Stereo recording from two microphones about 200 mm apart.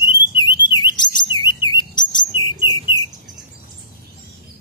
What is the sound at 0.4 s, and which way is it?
Chirp, 20° left (ahead or behind).